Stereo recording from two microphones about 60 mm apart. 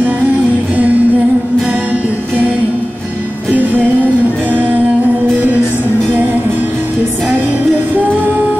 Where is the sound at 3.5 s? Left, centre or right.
Right.